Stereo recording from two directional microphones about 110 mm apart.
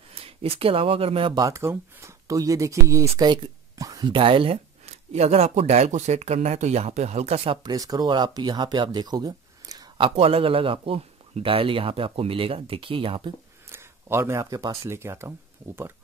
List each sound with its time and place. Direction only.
0.1 s speech: 60° right (ahead or behind)
1.3 s speech: 30° right (ahead or behind)
3.3 s a sound: 30° right (ahead or behind)
4.1 s speech: 50° right (ahead or behind); by 7.5 s 70° right (ahead or behind)
7.6 s speech: 35° right (ahead or behind)
10.0 s speech: 60° right (ahead or behind)
13.7 s speech: 20° right (ahead or behind)
14.9 s speech: 25° right (ahead or behind)